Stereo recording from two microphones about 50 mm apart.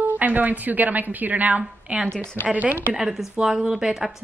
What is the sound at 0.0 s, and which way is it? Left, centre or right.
A woman's voice, right.